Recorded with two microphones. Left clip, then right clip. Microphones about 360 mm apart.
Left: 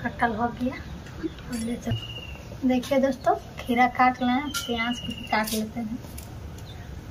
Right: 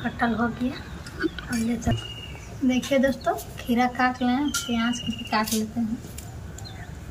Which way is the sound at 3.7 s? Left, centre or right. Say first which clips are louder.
Left 3 dB; centre.